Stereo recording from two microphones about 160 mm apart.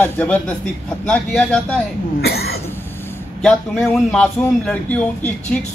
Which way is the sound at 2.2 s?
80° left.